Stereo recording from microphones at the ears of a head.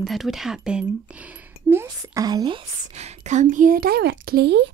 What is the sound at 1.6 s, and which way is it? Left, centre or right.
A woman's voice, right.